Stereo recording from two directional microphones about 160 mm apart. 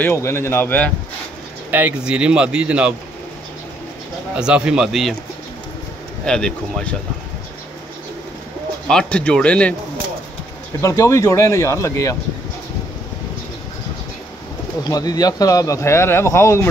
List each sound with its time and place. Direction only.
0.0 s speech: 15° left (ahead or behind)
1.7 s speech: 10° right (ahead or behind)
4.4 s speech: 5° right (ahead or behind)
6.2 s speech: 5° left (ahead or behind)
8.8 s speech: 5° left (ahead or behind)
10.8 s speech: 20° left (ahead or behind)
14.8 s speech: 25° left (ahead or behind)